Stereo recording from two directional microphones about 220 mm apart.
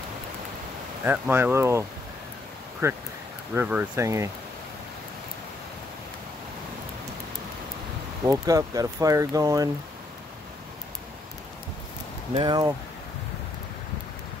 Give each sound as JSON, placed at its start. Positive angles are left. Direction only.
{"t": 1.0, "sound": "speech", "side_deg": -10}
{"t": 8.3, "sound": "speech", "side_deg": -15}
{"t": 12.4, "sound": "speech", "side_deg": -20}